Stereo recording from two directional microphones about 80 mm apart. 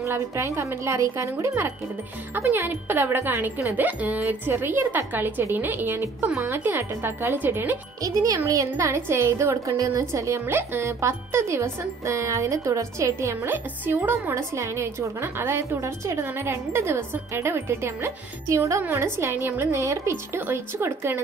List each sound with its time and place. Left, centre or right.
0.0 s speech: right
8.0 s a child's voice: right